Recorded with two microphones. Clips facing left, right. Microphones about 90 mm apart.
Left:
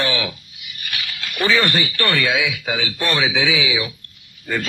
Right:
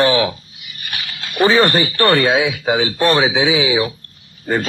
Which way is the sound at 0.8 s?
35° right (ahead or behind).